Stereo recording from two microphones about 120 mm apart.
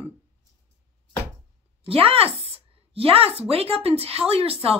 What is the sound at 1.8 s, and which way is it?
A woman's voice, 55° right (ahead or behind).